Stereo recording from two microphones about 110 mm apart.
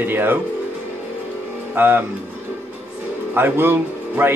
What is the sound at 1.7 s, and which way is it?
Speech, 20° right (ahead or behind).